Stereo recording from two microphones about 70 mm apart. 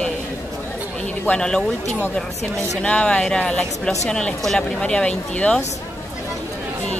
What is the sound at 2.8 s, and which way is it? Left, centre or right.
Speech, centre.